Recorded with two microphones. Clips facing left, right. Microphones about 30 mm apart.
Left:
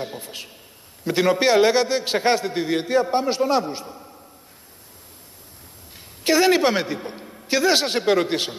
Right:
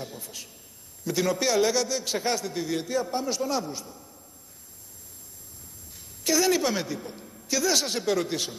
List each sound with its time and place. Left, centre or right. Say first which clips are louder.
0.0 s a man's voice: left 7 dB; left
6.2 s a man's voice: left 6 dB; left